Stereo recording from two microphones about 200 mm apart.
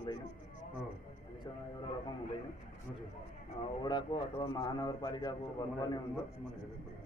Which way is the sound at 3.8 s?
20° left (ahead or behind).